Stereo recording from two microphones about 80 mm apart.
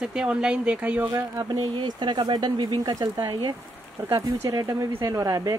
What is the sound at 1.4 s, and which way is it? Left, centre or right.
Speech, right.